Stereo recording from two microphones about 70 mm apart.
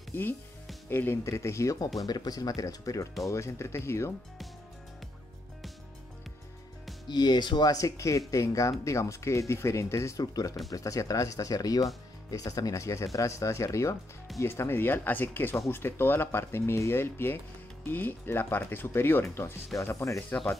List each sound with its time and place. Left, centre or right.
0.1 s speech: left
1.2 s speech: left
2.0 s speech: left
7.1 s speech: left
10.2 s speech: left
19.7 s speech: left